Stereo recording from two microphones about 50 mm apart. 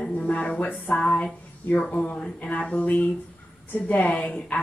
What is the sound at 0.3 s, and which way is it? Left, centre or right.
Speech, left.